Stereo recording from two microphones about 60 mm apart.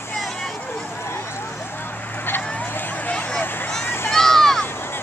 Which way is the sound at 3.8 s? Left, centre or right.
Left.